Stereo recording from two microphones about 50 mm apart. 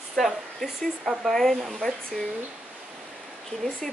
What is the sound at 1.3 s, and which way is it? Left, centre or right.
Speech, centre.